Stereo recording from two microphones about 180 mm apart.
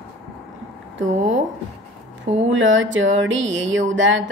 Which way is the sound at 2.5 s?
90° right.